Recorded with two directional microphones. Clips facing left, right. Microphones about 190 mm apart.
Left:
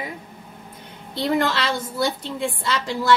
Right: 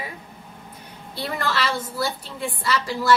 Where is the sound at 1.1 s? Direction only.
20° left (ahead or behind).